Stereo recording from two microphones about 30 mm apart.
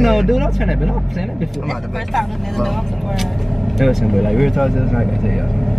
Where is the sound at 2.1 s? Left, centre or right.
Centre.